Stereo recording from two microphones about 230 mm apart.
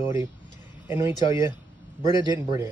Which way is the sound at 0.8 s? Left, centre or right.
Centre.